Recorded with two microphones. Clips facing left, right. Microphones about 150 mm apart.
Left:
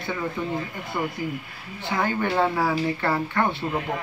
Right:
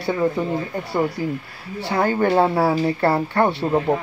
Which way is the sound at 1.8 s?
35° right (ahead or behind).